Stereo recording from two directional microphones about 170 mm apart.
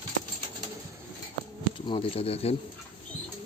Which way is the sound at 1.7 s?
30° left (ahead or behind).